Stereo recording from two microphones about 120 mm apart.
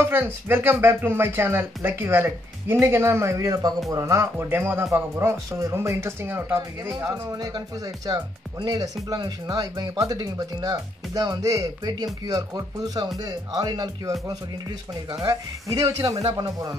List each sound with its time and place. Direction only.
0.0 s speech: 20° right (ahead or behind)
7.1 s speech: 30° right (ahead or behind)
15.1 s speech: 30° right (ahead or behind)